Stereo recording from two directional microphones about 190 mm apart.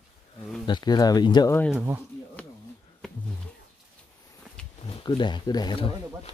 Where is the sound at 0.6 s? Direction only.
20° left (ahead or behind).